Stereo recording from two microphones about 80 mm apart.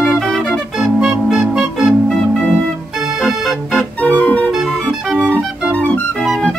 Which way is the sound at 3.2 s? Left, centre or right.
Centre.